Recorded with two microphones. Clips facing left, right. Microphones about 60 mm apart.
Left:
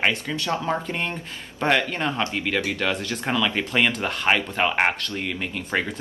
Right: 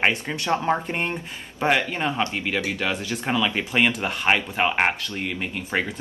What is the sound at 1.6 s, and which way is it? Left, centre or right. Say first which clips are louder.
Speech: even; centre.